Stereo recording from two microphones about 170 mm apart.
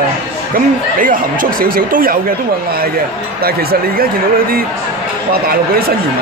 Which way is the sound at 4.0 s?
60° right (ahead or behind).